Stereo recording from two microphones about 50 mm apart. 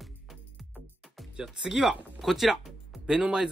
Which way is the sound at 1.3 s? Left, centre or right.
Centre.